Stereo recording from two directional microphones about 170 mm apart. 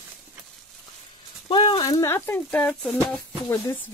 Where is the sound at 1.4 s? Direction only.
30° left (ahead or behind).